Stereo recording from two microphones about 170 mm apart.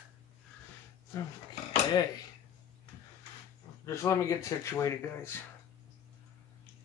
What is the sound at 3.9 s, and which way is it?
Speech, 15° left (ahead or behind).